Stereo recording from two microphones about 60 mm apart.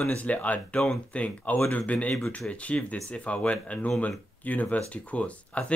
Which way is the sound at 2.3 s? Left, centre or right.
Left.